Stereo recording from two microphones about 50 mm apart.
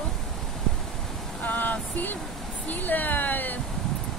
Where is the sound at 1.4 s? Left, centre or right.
Left.